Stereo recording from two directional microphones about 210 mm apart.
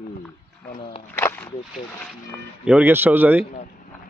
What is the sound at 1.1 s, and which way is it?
Speech, 10° left (ahead or behind).